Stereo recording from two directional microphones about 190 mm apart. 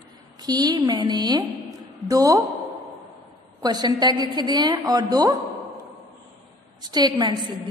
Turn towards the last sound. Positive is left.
turn(degrees=-25)  # may be behind; listen again after turning